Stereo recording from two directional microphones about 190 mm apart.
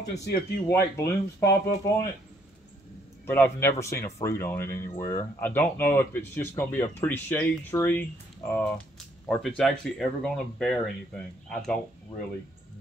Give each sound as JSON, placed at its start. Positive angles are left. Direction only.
{"t": 0.2, "sound": "speech", "side_deg": 60}
{"t": 0.7, "sound": "speech", "side_deg": 15}
{"t": 3.3, "sound": "speech", "side_deg": 10}